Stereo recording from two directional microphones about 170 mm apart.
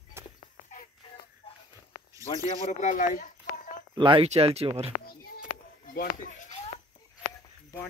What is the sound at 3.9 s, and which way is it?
Speech, 30° right (ahead or behind).